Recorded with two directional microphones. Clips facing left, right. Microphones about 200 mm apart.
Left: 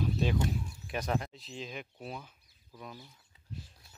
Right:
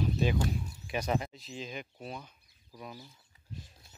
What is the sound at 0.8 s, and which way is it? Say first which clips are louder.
Speech: right 2 dB; centre (ahead or behind).